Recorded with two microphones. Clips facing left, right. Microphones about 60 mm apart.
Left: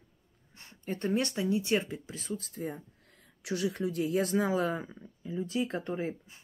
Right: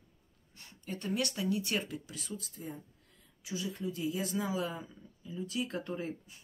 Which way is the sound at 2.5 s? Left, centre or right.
Left.